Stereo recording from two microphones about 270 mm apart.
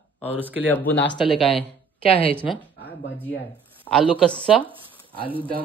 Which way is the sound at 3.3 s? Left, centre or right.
Centre.